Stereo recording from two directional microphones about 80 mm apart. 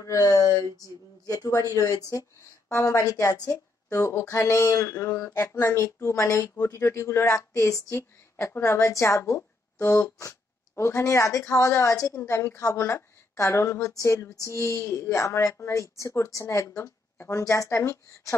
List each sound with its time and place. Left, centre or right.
0.0 s a woman's voice: left
3.9 s a woman's voice: left